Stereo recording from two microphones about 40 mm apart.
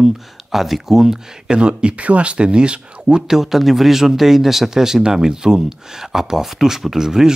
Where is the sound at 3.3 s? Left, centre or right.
Centre.